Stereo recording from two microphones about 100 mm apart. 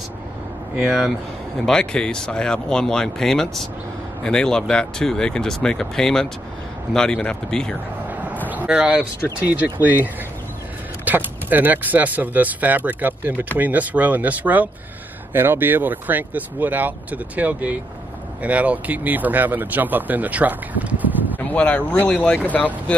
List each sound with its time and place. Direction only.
0.7 s speech: centre (ahead or behind)
8.5 s speech: 15° right (ahead or behind)
11.1 s speech: 20° right (ahead or behind)
21.4 s speech: 15° left (ahead or behind)